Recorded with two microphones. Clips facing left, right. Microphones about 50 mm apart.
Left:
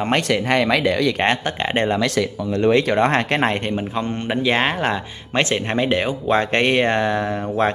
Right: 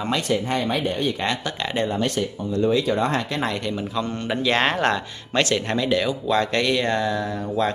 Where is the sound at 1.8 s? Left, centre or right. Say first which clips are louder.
Left 3 dB; left.